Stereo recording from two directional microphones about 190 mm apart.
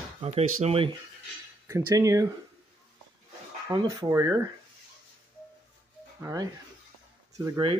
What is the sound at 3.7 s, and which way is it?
Speech, 25° right (ahead or behind).